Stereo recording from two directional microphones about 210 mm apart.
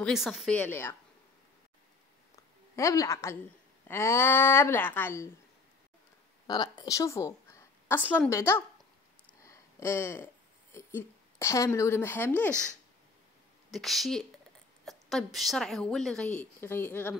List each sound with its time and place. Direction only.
0.0 s a woman's voice: centre (ahead or behind)
2.7 s speech: 15° left (ahead or behind)
6.4 s a woman's voice: 20° left (ahead or behind)
9.4 s a sound: 15° left (ahead or behind)
13.7 s a woman's voice: centre (ahead or behind)